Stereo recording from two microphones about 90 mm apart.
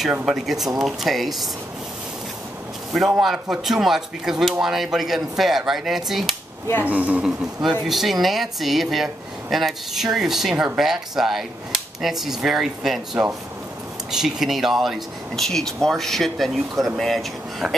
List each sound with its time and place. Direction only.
0.2 s speech: 5° right (ahead or behind)
3.2 s speech: 5° right (ahead or behind)
6.8 s speech: 15° right (ahead or behind)
7.6 s speech: 5° right (ahead or behind)